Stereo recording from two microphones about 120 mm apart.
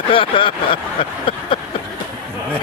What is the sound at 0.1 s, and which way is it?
Speech, 45° left (ahead or behind).